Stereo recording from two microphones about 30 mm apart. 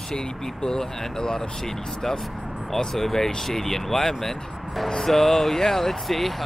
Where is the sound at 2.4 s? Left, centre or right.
Centre.